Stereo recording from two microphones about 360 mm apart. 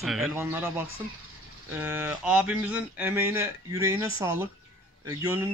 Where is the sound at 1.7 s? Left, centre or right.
Centre.